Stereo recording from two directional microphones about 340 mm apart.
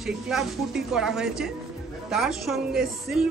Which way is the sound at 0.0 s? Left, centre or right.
Centre.